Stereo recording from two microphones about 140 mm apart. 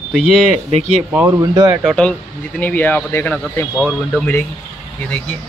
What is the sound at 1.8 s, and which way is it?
A man's voice, 5° left (ahead or behind).